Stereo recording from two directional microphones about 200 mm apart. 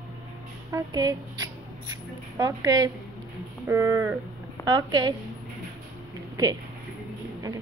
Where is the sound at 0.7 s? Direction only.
20° right (ahead or behind).